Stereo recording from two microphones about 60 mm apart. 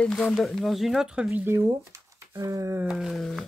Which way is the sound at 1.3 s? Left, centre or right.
Right.